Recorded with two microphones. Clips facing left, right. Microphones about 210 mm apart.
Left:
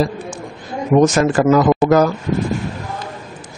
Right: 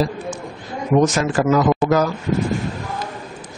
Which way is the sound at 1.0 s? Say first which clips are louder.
Left 4 dB; 50° left (ahead or behind).